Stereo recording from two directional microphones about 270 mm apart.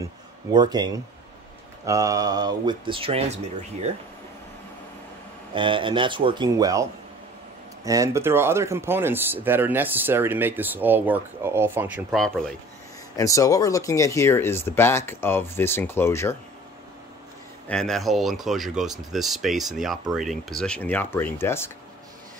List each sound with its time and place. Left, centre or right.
0.0 s speech: centre
5.5 s speech: centre
13.1 s speech: centre
17.6 s speech: centre